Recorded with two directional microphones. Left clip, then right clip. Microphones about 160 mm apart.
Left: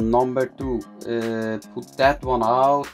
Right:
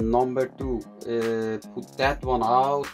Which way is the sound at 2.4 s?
45° left (ahead or behind).